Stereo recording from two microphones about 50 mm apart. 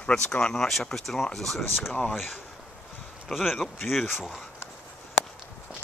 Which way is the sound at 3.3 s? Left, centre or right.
Centre.